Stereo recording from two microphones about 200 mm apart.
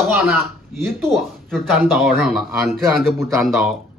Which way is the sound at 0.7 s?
Centre (ahead or behind).